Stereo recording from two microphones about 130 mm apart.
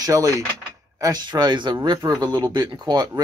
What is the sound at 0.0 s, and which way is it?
Speech, 25° right (ahead or behind).